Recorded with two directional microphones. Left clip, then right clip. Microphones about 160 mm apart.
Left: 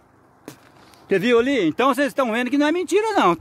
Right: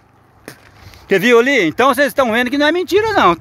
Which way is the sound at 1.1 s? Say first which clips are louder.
Right 7 dB; 25° right (ahead or behind).